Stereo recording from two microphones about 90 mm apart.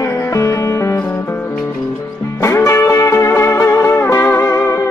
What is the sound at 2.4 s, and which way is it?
Music, 30° left (ahead or behind).